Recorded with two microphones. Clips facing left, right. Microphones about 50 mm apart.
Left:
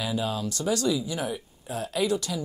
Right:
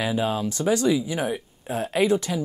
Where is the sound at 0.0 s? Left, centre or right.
Right.